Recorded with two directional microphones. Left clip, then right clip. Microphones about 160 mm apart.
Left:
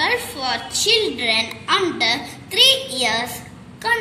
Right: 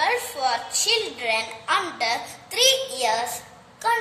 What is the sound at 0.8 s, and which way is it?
A woman's voice, 60° right (ahead or behind).